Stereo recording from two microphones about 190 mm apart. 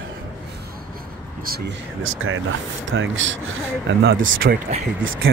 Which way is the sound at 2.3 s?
90° right.